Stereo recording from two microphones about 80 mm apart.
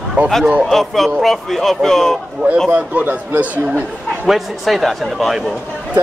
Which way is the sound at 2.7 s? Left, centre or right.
Centre.